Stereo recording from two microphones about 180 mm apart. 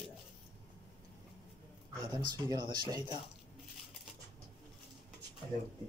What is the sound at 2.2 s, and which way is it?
Speech, 20° right (ahead or behind).